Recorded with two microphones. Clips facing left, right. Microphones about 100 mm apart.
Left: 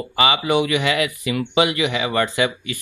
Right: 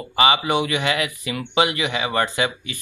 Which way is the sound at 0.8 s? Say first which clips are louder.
Left 3 dB; 30° right (ahead or behind).